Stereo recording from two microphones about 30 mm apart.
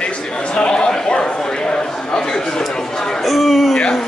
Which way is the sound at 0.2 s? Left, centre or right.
Left.